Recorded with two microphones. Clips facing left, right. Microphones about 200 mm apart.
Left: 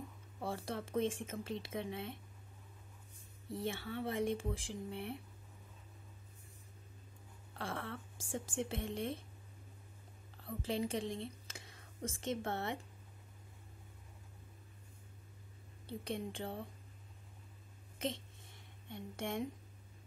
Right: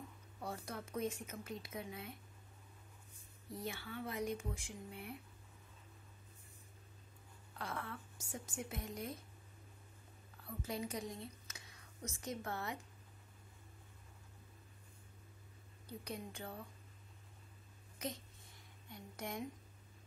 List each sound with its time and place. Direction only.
0.4 s speech: 30° left (ahead or behind)
3.4 s speech: 25° left (ahead or behind)
7.5 s a sound: 30° left (ahead or behind)
8.2 s speech: 30° left (ahead or behind)
10.4 s speech: 30° left (ahead or behind)
11.4 s a sound: 30° left (ahead or behind)
12.2 s speech: 25° left (ahead or behind)
15.9 s speech: 25° left (ahead or behind)
17.9 s a sound: 25° left (ahead or behind)